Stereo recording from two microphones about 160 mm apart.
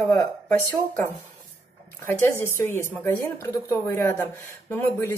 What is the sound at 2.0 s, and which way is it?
A woman's voice, 15° left (ahead or behind).